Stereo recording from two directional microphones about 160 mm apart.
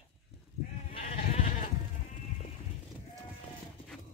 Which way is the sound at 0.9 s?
45° left (ahead or behind).